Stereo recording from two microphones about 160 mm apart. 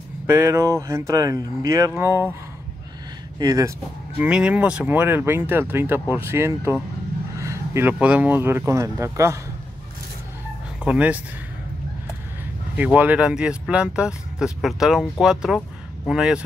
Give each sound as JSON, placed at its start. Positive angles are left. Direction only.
{"t": 0.3, "sound": "speech", "side_deg": -15}
{"t": 3.3, "sound": "speech", "side_deg": -25}
{"t": 4.2, "sound": "speech", "side_deg": -5}
{"t": 10.8, "sound": "speech", "side_deg": -10}
{"t": 12.7, "sound": "speech", "side_deg": -10}